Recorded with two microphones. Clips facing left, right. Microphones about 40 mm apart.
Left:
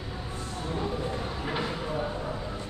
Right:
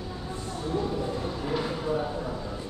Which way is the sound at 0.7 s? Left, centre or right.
Left.